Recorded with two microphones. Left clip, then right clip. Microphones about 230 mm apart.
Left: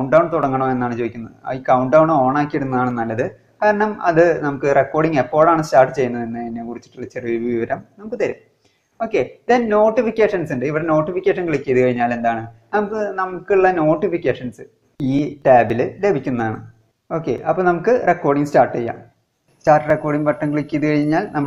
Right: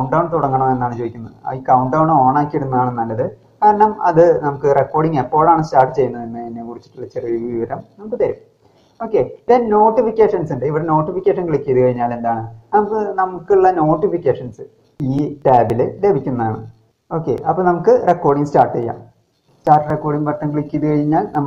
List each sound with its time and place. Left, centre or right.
0.1 s speech: left
2.0 s speech: left
5.9 s speech: left
9.7 s speech: left
9.9 s speech: left
15.0 s speech: centre
15.7 s speech: left
16.3 s speech: left
17.5 s speech: left
19.6 s speech: left
21.2 s speech: left